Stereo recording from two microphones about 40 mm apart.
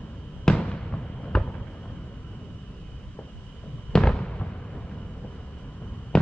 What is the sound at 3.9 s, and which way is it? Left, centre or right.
Fireworks, left.